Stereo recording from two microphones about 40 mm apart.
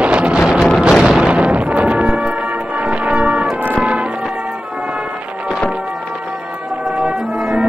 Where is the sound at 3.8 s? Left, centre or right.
Right.